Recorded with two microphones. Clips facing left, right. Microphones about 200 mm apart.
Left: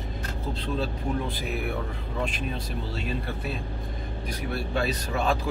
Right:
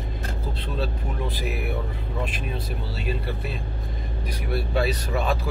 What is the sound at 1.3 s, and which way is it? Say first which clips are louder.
Speech: right 1 dB; 5° right (ahead or behind).